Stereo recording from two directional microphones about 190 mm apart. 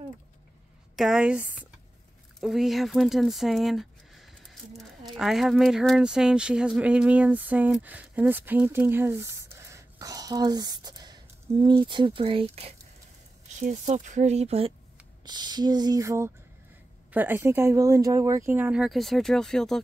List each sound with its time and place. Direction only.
0.9 s a woman's voice: 5° right (ahead or behind); by 14.7 s 35° right (ahead or behind)
15.2 s speech: 20° right (ahead or behind); by 19.8 s centre (ahead or behind)